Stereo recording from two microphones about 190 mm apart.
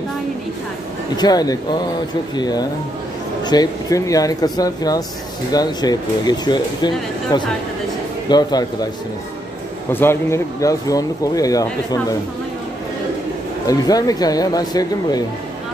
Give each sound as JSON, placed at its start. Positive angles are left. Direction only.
{"t": 1.1, "sound": "speech", "side_deg": 20}
{"t": 9.9, "sound": "speech", "side_deg": 15}
{"t": 13.7, "sound": "speech", "side_deg": 20}